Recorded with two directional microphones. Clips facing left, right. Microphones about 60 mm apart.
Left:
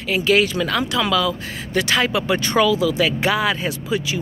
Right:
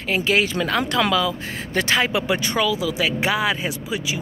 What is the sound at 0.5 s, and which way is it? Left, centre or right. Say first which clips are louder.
Speech: even; right.